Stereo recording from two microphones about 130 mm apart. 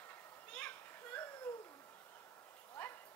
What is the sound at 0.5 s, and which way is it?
Children playing, 15° left (ahead or behind).